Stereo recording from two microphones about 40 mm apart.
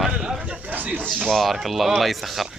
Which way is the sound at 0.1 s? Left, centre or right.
Centre.